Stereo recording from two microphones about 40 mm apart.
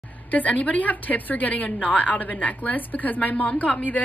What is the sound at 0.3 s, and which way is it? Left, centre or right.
A woman's voice, left.